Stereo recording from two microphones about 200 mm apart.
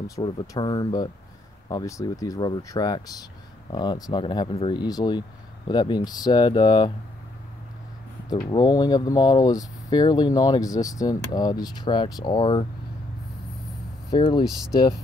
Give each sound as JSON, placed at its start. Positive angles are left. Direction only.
{"t": 0.1, "sound": "speech", "side_deg": 25}
{"t": 8.3, "sound": "speech", "side_deg": 20}
{"t": 14.1, "sound": "speech", "side_deg": 20}